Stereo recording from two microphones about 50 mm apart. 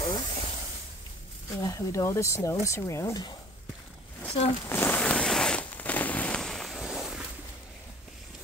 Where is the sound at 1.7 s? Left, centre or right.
Left.